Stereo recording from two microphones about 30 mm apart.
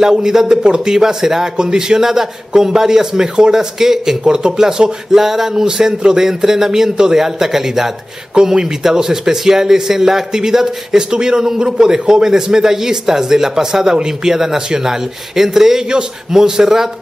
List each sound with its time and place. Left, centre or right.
0.0 s a man's voice: right
1.6 s a man's voice: right
4.3 s a man's voice: right
5.1 s a man's voice: centre
11.0 s a man's voice: right